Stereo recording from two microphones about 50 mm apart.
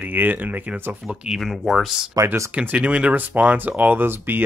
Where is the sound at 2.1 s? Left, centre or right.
Right.